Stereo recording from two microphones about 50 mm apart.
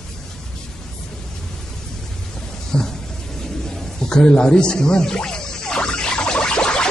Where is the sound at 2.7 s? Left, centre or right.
Centre.